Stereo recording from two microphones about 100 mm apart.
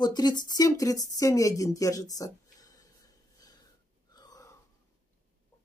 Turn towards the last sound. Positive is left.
turn(degrees=40)  # may be behind; listen again after turning